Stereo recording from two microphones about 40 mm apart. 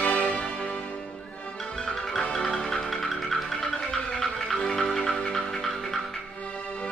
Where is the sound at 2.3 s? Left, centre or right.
Centre.